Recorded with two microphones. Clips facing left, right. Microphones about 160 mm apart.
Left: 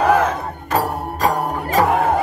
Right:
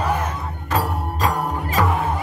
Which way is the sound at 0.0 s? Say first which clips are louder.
Left 8 dB; 90° left.